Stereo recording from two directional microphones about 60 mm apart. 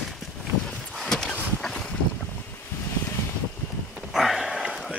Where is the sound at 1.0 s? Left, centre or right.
Centre.